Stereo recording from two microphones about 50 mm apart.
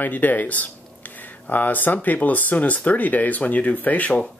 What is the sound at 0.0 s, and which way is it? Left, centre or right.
Speech, left.